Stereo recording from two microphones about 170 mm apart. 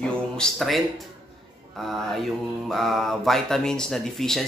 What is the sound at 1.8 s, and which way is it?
Speech, centre (ahead or behind).